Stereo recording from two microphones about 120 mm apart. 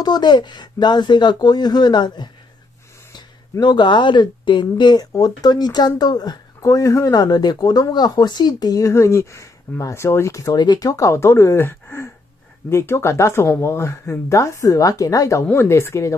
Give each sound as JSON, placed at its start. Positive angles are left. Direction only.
{"t": 0.0, "sound": "speech", "side_deg": 35}